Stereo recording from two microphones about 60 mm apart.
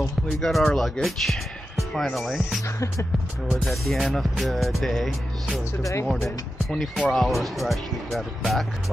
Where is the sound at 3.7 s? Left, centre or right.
Centre.